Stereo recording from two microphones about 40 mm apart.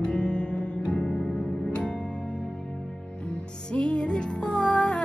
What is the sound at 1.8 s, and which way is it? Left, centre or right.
Music, left.